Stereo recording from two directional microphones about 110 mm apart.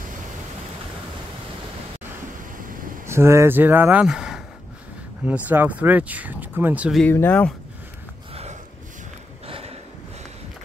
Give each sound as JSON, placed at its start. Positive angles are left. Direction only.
{"t": 3.1, "sound": "speech", "side_deg": -25}
{"t": 4.0, "sound": "speech", "side_deg": -5}
{"t": 7.1, "sound": "speech", "side_deg": 15}
{"t": 9.5, "sound": "a sound", "side_deg": -65}